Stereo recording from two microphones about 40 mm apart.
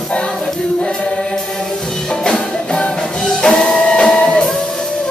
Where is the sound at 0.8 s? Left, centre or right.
Left.